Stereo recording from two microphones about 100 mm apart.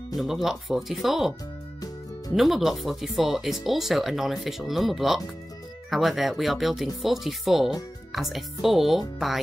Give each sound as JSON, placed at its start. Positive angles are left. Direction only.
{"t": 0.1, "sound": "speech", "side_deg": 0}
{"t": 2.3, "sound": "speech", "side_deg": 0}